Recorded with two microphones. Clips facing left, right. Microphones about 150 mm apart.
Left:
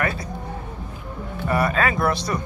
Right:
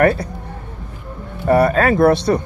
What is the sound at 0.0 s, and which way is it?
Speech, 60° right (ahead or behind).